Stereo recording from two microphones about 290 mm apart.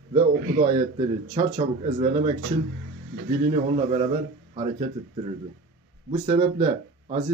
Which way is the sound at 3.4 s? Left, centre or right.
Right.